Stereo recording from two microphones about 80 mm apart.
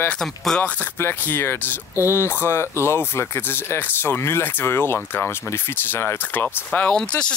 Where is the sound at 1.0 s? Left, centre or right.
Left.